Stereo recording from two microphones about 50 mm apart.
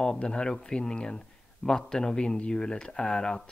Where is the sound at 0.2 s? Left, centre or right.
Centre.